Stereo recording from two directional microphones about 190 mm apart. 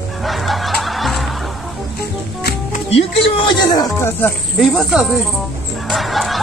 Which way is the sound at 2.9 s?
25° left (ahead or behind).